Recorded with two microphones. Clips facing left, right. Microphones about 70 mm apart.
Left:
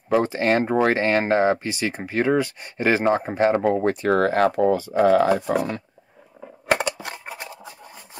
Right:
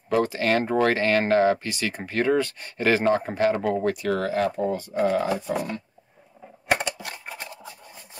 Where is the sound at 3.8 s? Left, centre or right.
Left.